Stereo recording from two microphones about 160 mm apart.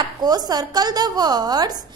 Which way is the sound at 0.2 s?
25° right (ahead or behind).